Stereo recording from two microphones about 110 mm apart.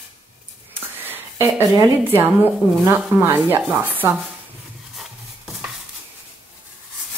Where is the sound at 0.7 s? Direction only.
20° right (ahead or behind).